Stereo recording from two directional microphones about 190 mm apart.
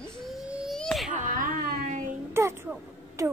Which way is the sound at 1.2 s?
45° right (ahead or behind).